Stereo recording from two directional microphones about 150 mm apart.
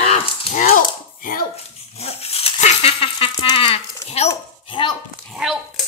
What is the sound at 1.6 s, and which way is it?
Dog, 45° left (ahead or behind).